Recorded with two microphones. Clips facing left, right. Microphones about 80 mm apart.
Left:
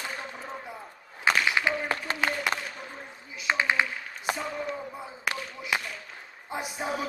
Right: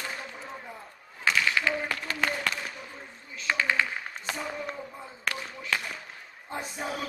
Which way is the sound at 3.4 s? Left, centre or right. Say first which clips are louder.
Left 1 dB; centre.